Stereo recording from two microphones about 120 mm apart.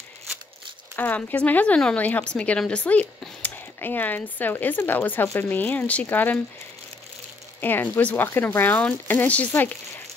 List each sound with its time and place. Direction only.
0.9 s speech: 15° left (ahead or behind)
7.6 s speech: 15° left (ahead or behind)